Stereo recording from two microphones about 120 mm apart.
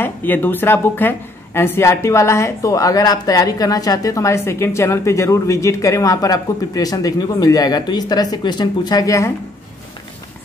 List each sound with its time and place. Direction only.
0.0 s a woman's voice: 15° left (ahead or behind)